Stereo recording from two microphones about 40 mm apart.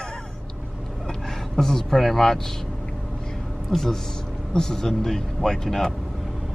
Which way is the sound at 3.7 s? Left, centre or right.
Centre.